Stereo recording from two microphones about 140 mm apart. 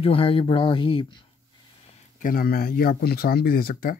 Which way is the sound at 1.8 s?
60° left (ahead or behind).